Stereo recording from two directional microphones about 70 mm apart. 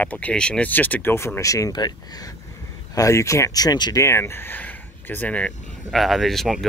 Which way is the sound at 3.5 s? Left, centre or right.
Left.